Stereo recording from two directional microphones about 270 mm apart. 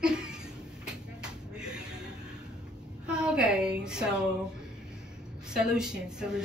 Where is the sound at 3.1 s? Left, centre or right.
Centre.